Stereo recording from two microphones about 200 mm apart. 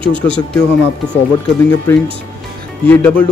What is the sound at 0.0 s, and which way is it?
Speech, 25° right (ahead or behind).